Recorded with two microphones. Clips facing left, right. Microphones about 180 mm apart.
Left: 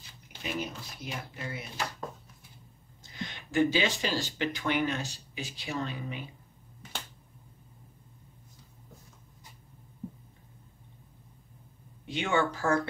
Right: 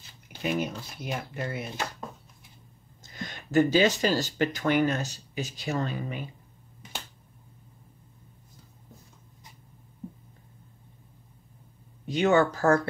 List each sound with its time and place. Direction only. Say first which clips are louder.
0.4 s speech: right 6 dB; 50° right (ahead or behind)
3.0 s speech: right 1 dB; 45° right (ahead or behind)
12.1 s speech: right 7 dB; 40° right (ahead or behind)